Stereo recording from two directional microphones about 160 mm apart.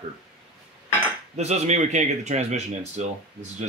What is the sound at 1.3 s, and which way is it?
A man's voice, 45° right (ahead or behind).